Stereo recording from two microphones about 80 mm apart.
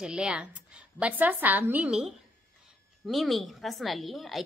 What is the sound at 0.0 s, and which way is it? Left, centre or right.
A woman's voice, centre.